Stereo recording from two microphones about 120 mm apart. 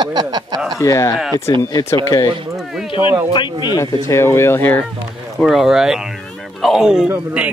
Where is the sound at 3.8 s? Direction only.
25° left (ahead or behind).